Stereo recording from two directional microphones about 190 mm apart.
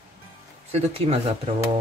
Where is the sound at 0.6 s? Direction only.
35° right (ahead or behind).